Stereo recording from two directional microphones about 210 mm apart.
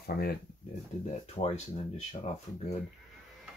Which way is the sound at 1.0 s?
30° left (ahead or behind).